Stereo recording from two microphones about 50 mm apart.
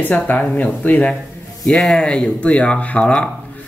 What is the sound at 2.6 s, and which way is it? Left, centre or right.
Speech, left.